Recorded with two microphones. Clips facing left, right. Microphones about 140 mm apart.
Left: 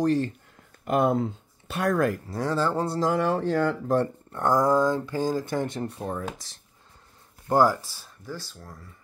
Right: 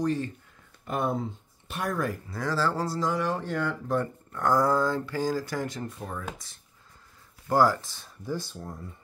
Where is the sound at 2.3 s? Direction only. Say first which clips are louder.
Left 3 dB; 25° left (ahead or behind).